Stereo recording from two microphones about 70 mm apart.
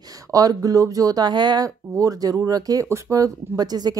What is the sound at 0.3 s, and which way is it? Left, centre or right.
Speech, right.